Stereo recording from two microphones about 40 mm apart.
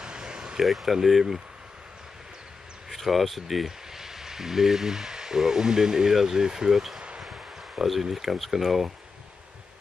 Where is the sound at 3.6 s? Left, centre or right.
Centre.